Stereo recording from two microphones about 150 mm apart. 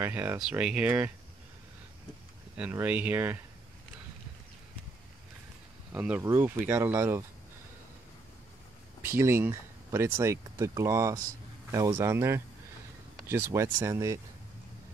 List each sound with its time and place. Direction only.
0.0 s speech: 15° right (ahead or behind)
2.5 s speech: 10° right (ahead or behind)
5.9 s speech: 10° right (ahead or behind)
9.0 s speech: 15° right (ahead or behind)